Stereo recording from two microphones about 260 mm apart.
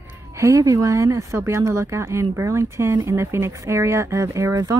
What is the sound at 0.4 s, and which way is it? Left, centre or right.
Speech, centre.